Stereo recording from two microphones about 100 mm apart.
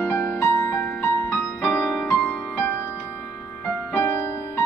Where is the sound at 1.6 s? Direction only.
5° left (ahead or behind).